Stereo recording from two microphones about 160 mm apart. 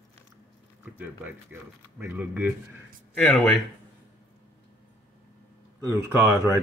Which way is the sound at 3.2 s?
5° left (ahead or behind).